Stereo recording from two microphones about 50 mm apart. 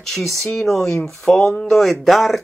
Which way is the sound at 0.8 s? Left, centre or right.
Left.